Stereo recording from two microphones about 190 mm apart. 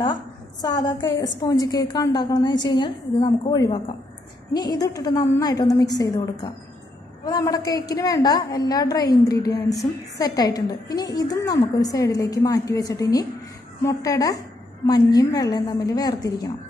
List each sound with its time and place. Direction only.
0.0 s a woman's voice: 20° left (ahead or behind)